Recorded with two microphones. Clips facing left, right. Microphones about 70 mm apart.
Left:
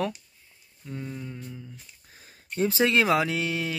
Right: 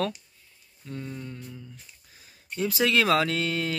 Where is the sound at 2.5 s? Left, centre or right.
Left; by 3.7 s centre.